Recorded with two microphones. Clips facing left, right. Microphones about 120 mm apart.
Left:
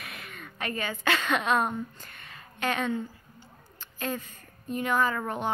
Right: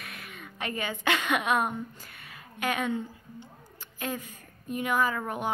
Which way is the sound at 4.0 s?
15° right (ahead or behind).